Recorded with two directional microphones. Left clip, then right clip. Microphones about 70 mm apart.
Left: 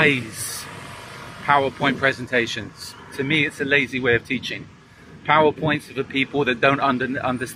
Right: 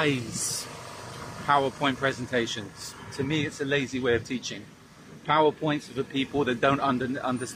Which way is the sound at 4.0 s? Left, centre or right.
Centre.